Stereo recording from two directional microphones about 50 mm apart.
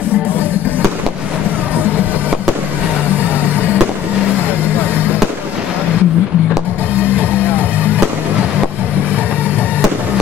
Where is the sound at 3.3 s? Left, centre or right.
Right.